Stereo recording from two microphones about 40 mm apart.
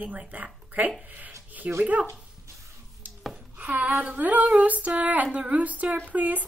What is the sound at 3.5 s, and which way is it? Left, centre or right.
Speech, right.